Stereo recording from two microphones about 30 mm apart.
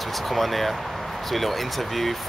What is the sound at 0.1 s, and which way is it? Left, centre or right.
Speech, centre.